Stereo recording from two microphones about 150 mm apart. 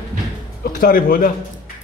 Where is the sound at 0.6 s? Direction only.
70° left (ahead or behind).